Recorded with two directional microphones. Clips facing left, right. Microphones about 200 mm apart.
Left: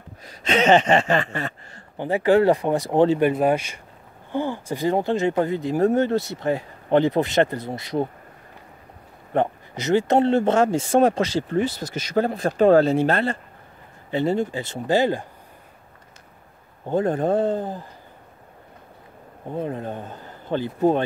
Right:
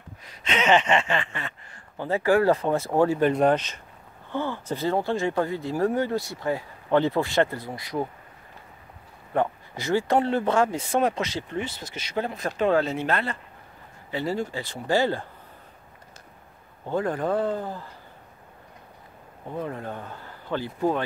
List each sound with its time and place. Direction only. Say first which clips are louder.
0.2 s speech: left 6 dB; 40° left (ahead or behind)
2.0 s speech: left 4 dB; 20° left (ahead or behind)
3.3 s speech: left 1 dB; 10° left (ahead or behind); by 8.1 s 25° left (ahead or behind)
9.3 s speech: left 3 dB; 25° left (ahead or behind)
16.8 s speech: left 5 dB; 25° left (ahead or behind)
19.5 s speech: left 4 dB; 25° left (ahead or behind)